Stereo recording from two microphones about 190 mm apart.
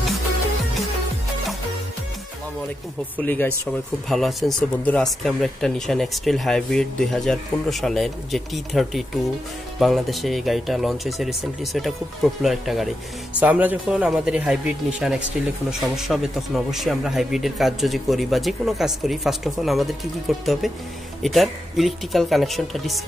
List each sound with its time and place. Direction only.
3.2 s speech: 10° left (ahead or behind)